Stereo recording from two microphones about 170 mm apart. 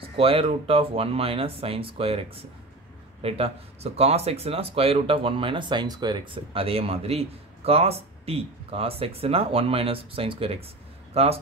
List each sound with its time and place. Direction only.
0.0 s speech: 35° right (ahead or behind)